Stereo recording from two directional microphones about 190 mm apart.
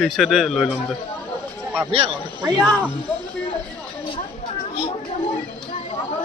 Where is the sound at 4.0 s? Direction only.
25° left (ahead or behind).